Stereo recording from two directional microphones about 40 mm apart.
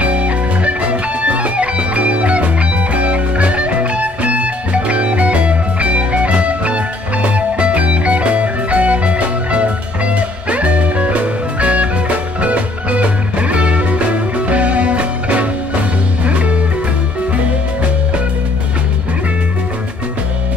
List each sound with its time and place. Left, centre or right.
0.0 s music: right